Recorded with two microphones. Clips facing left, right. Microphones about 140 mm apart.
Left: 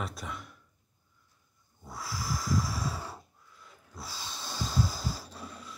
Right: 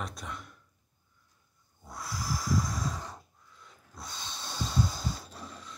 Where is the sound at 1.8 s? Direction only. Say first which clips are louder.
Even; centre (ahead or behind).